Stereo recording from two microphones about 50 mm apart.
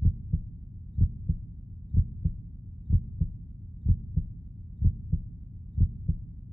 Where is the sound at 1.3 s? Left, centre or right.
Centre.